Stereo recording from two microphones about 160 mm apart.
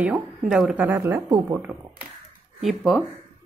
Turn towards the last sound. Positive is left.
turn(degrees=0)  # may be behind; listen again after turning